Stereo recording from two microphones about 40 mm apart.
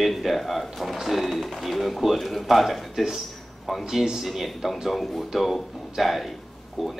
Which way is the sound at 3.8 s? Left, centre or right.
Centre.